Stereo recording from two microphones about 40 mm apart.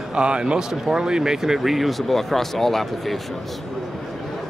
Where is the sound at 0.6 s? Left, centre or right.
Centre.